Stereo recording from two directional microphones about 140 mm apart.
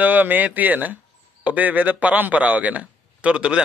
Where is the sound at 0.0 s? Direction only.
10° right (ahead or behind).